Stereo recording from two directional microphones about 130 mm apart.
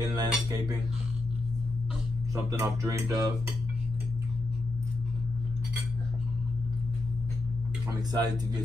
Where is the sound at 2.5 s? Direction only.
25° right (ahead or behind).